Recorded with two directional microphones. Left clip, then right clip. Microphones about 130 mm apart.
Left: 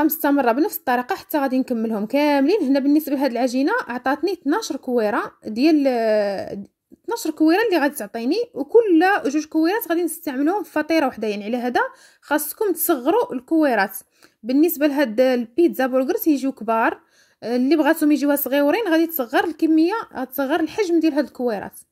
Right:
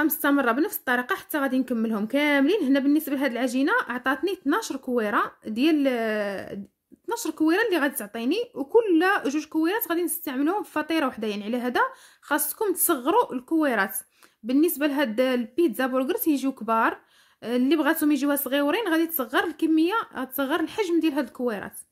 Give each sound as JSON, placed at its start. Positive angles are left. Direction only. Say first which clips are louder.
{"t": 0.0, "sound": "a woman's voice", "louder": "left 4 dB", "side_deg": 25}